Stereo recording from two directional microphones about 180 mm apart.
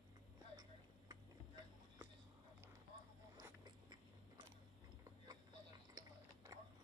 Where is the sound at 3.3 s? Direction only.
25° right (ahead or behind).